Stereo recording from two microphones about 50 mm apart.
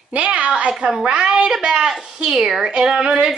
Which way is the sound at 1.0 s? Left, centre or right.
Centre.